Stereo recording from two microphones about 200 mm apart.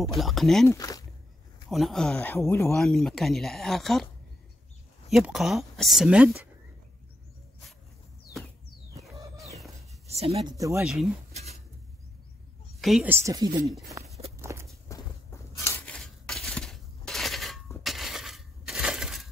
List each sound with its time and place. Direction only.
0.0 s speech: centre (ahead or behind)
0.7 s speech: 15° left (ahead or behind)
1.7 s speech: centre (ahead or behind)
2.1 s speech: 10° left (ahead or behind)
2.7 s speech: centre (ahead or behind)
5.1 s speech: centre (ahead or behind)
10.0 s speech: 30° right (ahead or behind)
10.8 s speech: centre (ahead or behind)
11.3 s writing: 35° right (ahead or behind)
12.8 s speech: centre (ahead or behind)
13.1 s speech: 15° right (ahead or behind)
14.4 s walk: 15° right (ahead or behind)
14.9 s a sound: 15° left (ahead or behind)
17.8 s glass: centre (ahead or behind)